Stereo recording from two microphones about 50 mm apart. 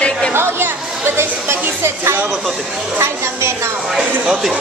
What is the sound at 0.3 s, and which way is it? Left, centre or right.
Chatter, right.